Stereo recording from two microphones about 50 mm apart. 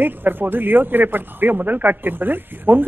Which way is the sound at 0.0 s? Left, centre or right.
Right.